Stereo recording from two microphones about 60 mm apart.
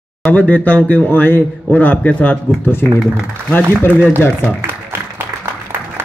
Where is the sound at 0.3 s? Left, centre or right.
Left.